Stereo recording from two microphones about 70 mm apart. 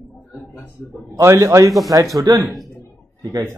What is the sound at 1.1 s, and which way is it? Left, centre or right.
Speech, right.